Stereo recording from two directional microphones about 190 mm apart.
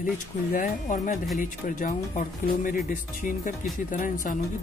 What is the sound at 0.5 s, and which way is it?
Speech, 45° left (ahead or behind).